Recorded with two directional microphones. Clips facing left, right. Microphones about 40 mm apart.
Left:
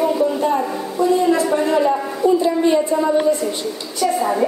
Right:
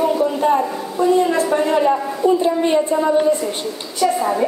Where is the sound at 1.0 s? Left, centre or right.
Right.